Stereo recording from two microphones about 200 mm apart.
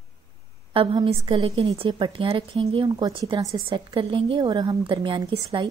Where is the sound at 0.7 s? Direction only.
25° right (ahead or behind).